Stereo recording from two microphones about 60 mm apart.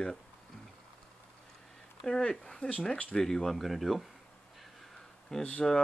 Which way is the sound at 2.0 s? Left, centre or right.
Centre.